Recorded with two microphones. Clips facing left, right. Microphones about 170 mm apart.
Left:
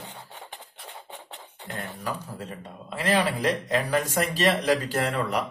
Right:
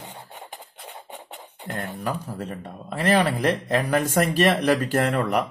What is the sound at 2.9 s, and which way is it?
Speech, 60° right (ahead or behind).